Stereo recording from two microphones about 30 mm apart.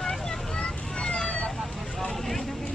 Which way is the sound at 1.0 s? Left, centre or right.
Left.